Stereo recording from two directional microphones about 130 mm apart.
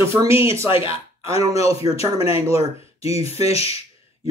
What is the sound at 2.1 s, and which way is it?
Speech, 50° left (ahead or behind).